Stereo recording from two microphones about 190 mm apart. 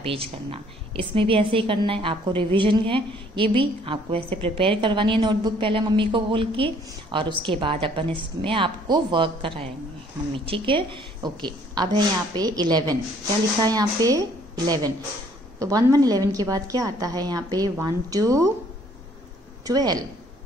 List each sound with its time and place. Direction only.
1.1 s a woman's voice: 30° right (ahead or behind)
19.6 s a woman's voice: 20° right (ahead or behind)